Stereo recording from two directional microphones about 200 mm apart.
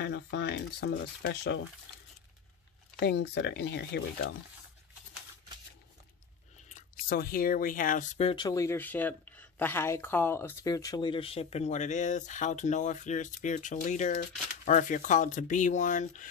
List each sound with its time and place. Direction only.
0.0 s speech: 55° left (ahead or behind)
3.0 s speech: 55° left (ahead or behind)
6.7 s speech: 50° left (ahead or behind)